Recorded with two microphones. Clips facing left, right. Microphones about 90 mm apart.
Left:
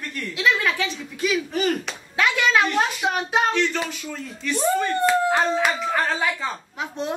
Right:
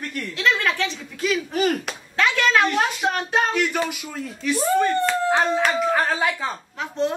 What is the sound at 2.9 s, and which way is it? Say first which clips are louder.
Speech: even; 5° left (ahead or behind).